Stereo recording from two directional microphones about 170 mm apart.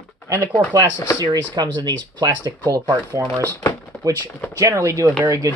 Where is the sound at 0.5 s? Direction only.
5° left (ahead or behind).